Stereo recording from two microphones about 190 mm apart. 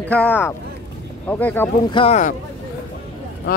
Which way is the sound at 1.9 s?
30° left (ahead or behind).